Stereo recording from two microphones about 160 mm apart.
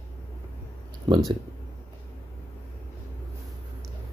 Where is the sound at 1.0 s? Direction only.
30° right (ahead or behind).